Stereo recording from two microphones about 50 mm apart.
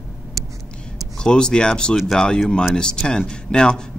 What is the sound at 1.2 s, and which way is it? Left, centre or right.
Speech, centre.